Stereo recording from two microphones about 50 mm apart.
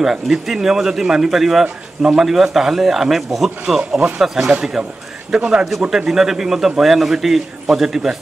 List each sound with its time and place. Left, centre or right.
0.0 s speech: centre